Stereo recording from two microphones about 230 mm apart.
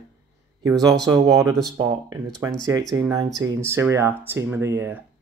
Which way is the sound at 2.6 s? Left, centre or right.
Centre.